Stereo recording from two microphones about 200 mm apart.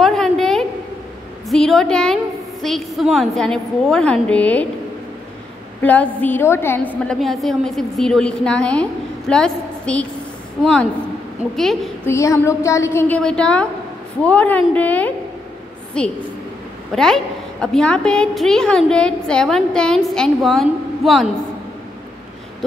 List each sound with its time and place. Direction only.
0.0 s a sound: centre (ahead or behind)
1.5 s a woman's voice: centre (ahead or behind)
5.8 s a woman's voice: 10° left (ahead or behind)
12.1 s a woman's voice: 15° left (ahead or behind)